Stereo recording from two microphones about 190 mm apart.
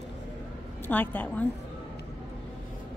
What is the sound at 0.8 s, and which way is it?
Speech, 10° left (ahead or behind).